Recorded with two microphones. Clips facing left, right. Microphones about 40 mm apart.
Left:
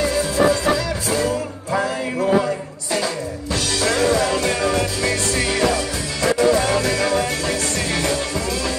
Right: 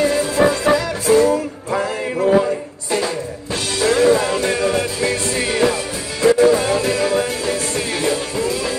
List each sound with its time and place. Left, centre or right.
0.0 s music: right
3.8 s music: right